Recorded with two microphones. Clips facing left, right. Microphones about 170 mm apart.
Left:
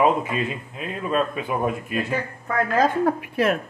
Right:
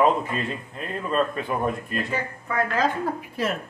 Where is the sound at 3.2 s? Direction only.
65° left (ahead or behind).